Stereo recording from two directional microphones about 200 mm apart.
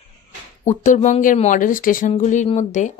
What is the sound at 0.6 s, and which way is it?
Speech, 35° left (ahead or behind).